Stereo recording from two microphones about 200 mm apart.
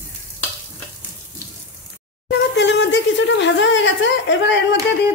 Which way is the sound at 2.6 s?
60° left (ahead or behind).